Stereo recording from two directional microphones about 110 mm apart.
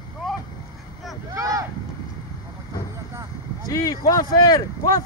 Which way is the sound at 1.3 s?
30° right (ahead or behind).